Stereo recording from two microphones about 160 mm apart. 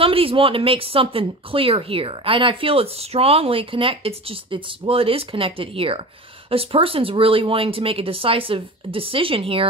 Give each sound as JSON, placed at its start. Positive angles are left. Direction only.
{"t": 0.0, "sound": "speech", "side_deg": -35}